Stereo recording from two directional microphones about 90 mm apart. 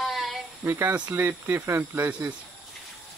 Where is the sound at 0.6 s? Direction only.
30° right (ahead or behind).